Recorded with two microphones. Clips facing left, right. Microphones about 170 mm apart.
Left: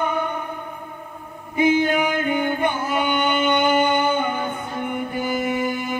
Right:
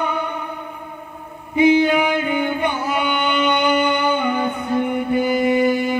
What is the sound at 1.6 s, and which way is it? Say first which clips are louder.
Music: right 4 dB; 50° left (ahead or behind).